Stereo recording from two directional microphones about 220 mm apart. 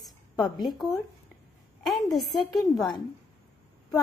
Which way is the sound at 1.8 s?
Centre (ahead or behind).